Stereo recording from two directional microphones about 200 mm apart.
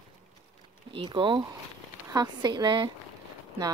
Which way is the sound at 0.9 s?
25° right (ahead or behind).